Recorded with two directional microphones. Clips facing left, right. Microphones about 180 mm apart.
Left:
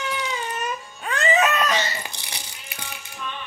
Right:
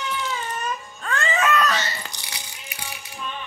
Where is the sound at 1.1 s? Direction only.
20° left (ahead or behind).